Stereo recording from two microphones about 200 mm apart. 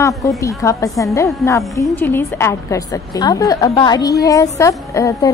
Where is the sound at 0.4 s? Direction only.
15° left (ahead or behind).